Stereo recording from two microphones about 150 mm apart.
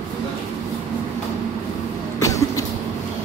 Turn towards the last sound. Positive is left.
turn(degrees=20)  # may be behind; listen again after turning